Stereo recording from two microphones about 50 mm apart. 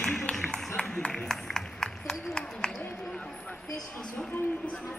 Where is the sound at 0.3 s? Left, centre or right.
Left.